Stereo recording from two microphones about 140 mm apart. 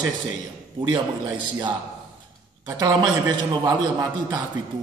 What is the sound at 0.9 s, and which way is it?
Speech, 35° right (ahead or behind).